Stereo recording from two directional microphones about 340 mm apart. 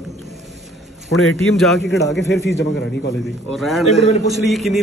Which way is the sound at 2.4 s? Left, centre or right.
Left.